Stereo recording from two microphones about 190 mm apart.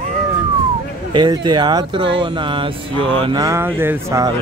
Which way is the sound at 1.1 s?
25° right (ahead or behind).